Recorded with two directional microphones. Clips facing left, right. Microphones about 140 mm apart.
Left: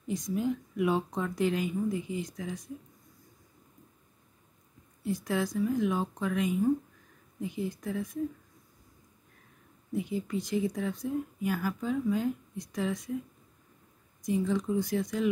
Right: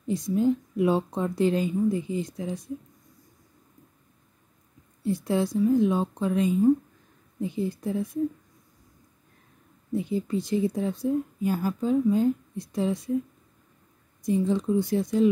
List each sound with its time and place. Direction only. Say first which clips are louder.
0.4 s a woman's voice: right 7 dB; 30° right (ahead or behind)
5.0 s a woman's voice: right 5 dB; 30° right (ahead or behind)
9.9 s a woman's voice: right 5 dB; 30° right (ahead or behind)
14.2 s a woman's voice: right 5 dB; 30° right (ahead or behind)